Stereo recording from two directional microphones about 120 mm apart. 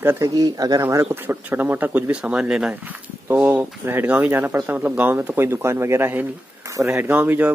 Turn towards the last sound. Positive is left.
turn(degrees=-15)  # may be behind; listen again after turning